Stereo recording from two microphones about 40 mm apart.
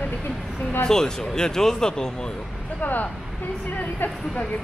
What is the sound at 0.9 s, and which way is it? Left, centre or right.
Speech, centre.